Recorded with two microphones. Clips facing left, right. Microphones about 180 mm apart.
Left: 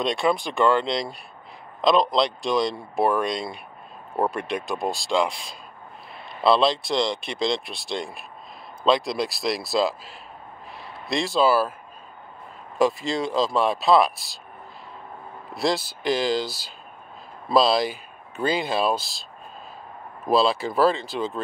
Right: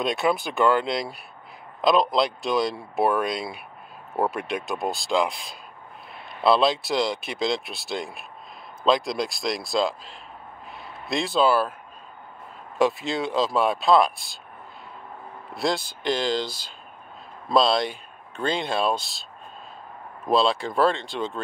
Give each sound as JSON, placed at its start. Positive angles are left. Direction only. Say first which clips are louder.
{"t": 0.0, "sound": "speech", "louder": "left 1 dB", "side_deg": -5}
{"t": 12.7, "sound": "speech", "louder": "left 1 dB", "side_deg": 0}
{"t": 15.5, "sound": "speech", "louder": "left 2 dB", "side_deg": 5}
{"t": 20.2, "sound": "speech", "louder": "left 1 dB", "side_deg": 5}